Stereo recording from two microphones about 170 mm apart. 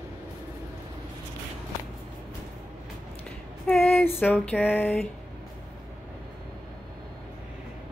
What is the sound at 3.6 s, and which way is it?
Female singing, 5° left (ahead or behind).